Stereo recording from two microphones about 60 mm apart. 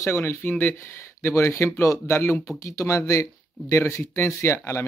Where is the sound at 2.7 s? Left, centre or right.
Left.